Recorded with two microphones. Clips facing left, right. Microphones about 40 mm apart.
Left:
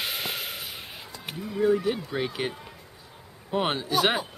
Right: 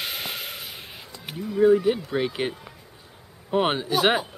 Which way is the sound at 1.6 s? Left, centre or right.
Centre.